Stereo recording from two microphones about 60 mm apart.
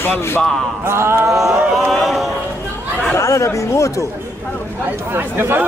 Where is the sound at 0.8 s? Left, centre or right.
Right.